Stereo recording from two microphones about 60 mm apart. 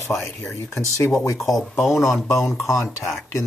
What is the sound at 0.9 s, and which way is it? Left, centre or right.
Speech, left.